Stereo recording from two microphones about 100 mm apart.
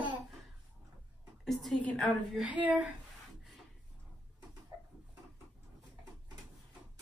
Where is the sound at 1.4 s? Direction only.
Centre (ahead or behind).